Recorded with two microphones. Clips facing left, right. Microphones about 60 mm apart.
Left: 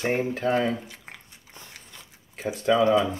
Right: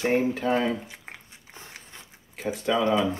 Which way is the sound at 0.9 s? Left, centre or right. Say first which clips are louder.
Right 1 dB; centre.